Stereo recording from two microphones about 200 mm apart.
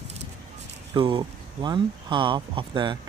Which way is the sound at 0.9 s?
20° right (ahead or behind).